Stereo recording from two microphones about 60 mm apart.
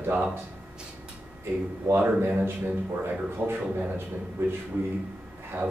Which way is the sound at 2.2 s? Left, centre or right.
Right.